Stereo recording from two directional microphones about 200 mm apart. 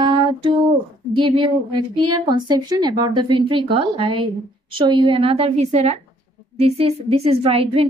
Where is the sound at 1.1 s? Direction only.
25° right (ahead or behind).